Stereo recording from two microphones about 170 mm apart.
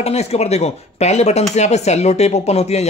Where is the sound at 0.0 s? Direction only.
40° left (ahead or behind).